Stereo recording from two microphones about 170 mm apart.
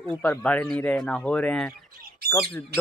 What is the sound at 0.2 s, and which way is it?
Speech, 10° left (ahead or behind).